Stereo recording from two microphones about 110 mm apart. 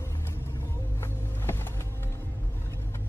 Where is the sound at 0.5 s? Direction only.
25° left (ahead or behind).